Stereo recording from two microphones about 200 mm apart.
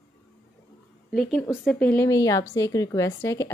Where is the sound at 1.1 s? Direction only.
5° left (ahead or behind).